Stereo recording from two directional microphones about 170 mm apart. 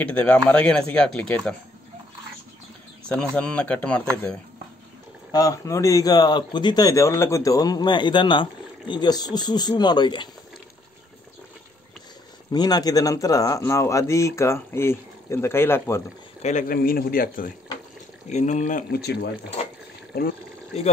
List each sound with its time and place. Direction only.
0.0 s speech: 10° left (ahead or behind)
3.1 s speech: 5° left (ahead or behind)
5.3 s speech: 20° left (ahead or behind)
12.4 s speech: 25° left (ahead or behind)
16.4 s a man's voice: 50° left (ahead or behind)
18.3 s speech: 45° left (ahead or behind); by 19.2 s 70° left (ahead or behind)